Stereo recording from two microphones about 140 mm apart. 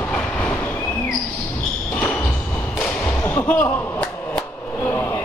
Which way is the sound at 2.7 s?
20° left (ahead or behind).